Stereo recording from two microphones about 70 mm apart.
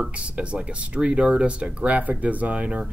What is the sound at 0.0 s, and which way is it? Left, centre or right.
Speech, centre.